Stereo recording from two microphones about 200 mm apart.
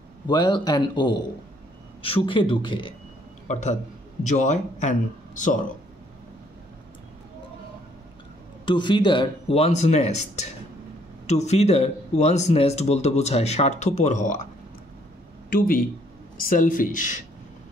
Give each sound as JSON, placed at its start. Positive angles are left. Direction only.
{"t": 0.3, "sound": "speech", "side_deg": 20}
{"t": 3.4, "sound": "a man's voice", "side_deg": 35}
{"t": 8.6, "sound": "speech", "side_deg": 25}
{"t": 15.5, "sound": "speech", "side_deg": 50}